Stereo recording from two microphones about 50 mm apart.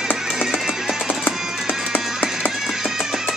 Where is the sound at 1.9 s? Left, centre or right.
Left.